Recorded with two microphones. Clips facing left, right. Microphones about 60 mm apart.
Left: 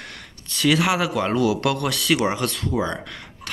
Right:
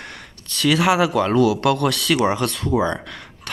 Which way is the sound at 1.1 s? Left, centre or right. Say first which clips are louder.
Right 4 dB; centre.